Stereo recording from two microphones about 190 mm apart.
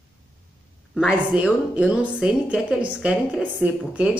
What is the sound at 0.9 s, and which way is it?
Speech, 5° right (ahead or behind).